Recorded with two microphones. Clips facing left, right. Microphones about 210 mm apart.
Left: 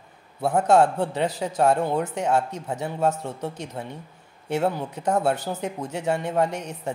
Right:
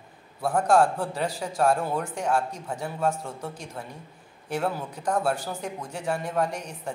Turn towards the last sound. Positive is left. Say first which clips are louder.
# left 3 dB
turn(degrees=25)  # may be behind; listen again after turning